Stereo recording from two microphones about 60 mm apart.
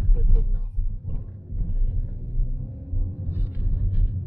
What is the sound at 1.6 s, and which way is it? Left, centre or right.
Rumble, right.